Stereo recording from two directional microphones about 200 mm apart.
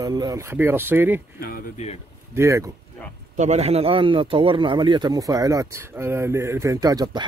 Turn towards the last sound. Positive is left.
turn(degrees=-20)  # may be behind; listen again after turning